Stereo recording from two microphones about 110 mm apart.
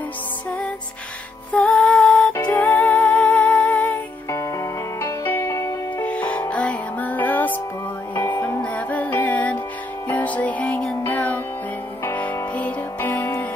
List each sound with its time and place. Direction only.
1.5 s music: 10° left (ahead or behind)
4.3 s music: 30° left (ahead or behind)
6.0 s music: 10° left (ahead or behind)